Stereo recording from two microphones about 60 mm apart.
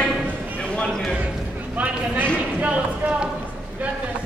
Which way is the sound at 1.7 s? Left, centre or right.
Right.